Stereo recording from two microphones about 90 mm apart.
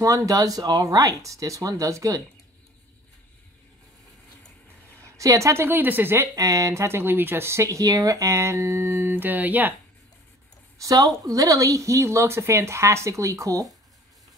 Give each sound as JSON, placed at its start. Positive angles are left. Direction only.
{"t": 0.0, "sound": "speech", "side_deg": -35}
{"t": 5.0, "sound": "a woman's voice", "side_deg": -40}
{"t": 6.3, "sound": "speech", "side_deg": -40}
{"t": 10.8, "sound": "speech", "side_deg": -40}